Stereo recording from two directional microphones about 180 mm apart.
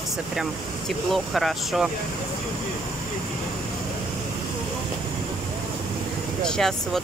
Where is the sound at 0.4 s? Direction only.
Centre (ahead or behind).